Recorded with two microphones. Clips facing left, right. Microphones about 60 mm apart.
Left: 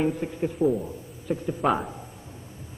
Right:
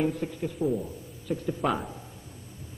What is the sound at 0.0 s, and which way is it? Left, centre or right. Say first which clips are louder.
A man's voice: left 3 dB; centre.